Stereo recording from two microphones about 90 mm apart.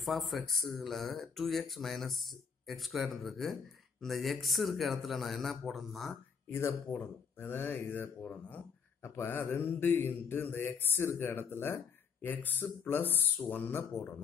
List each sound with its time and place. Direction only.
0.0 s speech: centre (ahead or behind)
6.5 s mantra: 30° left (ahead or behind)
8.5 s a sound: 20° left (ahead or behind)
9.1 s mantra: 25° left (ahead or behind)